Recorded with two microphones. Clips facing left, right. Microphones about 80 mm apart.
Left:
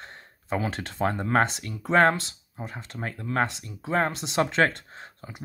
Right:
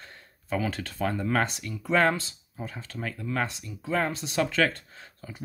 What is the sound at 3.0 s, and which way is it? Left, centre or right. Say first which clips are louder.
Speech: left 3 dB; left.